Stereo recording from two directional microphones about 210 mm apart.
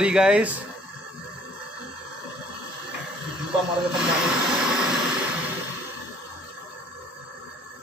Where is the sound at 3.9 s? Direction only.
5° right (ahead or behind).